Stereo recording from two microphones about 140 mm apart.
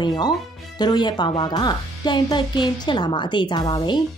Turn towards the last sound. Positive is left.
turn(degrees=30)  # may be behind; listen again after turning